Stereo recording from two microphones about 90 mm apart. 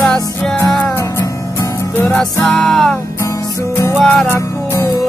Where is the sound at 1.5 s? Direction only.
30° left (ahead or behind).